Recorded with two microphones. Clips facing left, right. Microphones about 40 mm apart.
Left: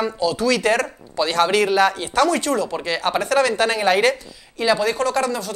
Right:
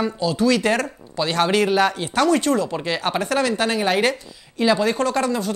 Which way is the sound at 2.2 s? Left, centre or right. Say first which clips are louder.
Right 4 dB; right.